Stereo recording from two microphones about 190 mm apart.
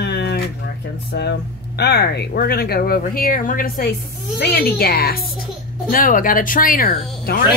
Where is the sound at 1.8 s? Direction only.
60° left (ahead or behind).